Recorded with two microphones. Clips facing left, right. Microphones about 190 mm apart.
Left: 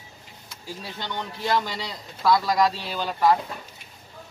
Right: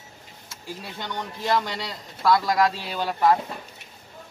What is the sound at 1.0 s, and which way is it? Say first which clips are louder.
Speech: even; 5° right (ahead or behind).